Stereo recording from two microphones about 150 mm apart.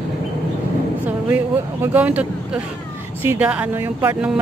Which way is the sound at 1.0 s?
10° right (ahead or behind).